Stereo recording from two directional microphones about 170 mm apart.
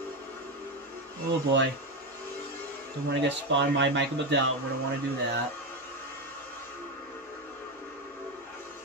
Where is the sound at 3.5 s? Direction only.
90° right.